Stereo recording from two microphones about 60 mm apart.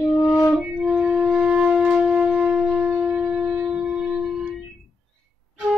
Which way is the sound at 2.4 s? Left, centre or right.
Centre.